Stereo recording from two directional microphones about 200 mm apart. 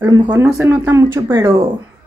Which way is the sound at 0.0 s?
20° right (ahead or behind).